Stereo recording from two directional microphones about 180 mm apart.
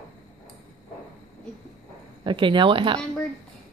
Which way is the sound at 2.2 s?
25° right (ahead or behind).